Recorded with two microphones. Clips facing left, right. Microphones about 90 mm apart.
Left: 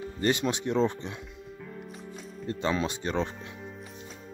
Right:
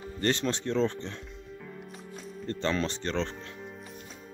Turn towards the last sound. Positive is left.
turn(degrees=15)  # may be behind; listen again after turning